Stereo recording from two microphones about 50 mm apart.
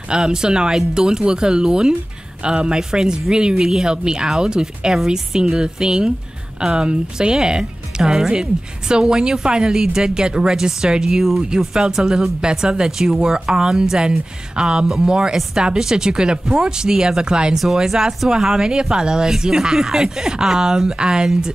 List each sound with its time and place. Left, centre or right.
0.1 s speech: centre